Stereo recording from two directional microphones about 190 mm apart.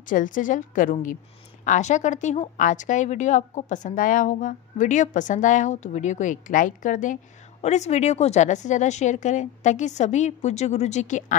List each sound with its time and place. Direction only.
0.1 s a woman's voice: 45° left (ahead or behind)